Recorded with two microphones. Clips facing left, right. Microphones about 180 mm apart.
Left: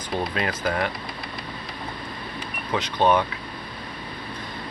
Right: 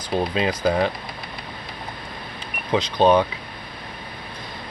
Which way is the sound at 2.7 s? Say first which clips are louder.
Right 4 dB; 20° right (ahead or behind).